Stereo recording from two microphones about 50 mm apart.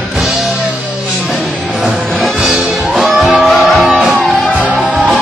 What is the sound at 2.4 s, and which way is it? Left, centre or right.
Music, centre.